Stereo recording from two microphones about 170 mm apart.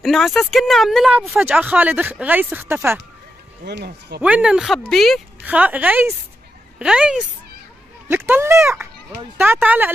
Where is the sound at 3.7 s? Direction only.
75° right (ahead or behind).